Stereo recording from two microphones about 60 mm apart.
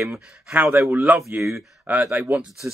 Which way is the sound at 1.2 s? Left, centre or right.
Right.